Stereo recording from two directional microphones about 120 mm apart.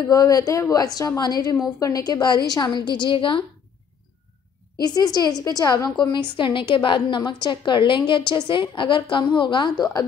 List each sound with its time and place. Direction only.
0.1 s a woman's voice: 30° left (ahead or behind); by 3.4 s 45° left (ahead or behind)
4.8 s a woman's voice: 30° left (ahead or behind)
6.1 s a woman's voice: 40° left (ahead or behind)